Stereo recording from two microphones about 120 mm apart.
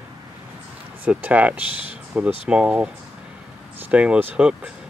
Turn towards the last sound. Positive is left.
turn(degrees=-10)  # may be behind; listen again after turning